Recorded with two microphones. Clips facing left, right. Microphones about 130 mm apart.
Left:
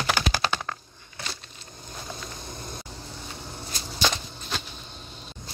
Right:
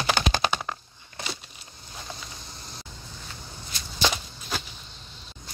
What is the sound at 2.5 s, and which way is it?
Vehicle, 50° left (ahead or behind).